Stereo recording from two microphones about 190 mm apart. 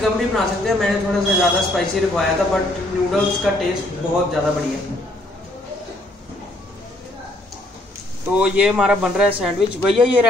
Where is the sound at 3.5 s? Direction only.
Centre (ahead or behind).